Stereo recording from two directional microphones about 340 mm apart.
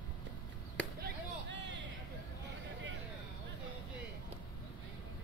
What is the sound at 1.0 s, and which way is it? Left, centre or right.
Chop, right.